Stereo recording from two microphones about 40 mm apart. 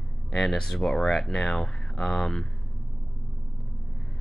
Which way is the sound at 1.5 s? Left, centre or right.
Left.